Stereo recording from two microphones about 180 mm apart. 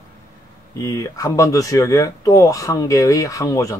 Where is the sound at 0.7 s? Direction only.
20° left (ahead or behind).